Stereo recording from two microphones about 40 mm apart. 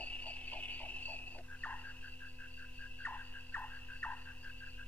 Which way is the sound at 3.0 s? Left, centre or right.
Left.